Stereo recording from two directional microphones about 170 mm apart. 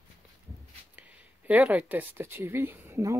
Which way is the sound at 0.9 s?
10° right (ahead or behind).